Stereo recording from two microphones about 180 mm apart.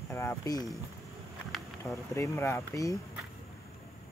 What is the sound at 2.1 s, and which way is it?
Speech, 15° left (ahead or behind).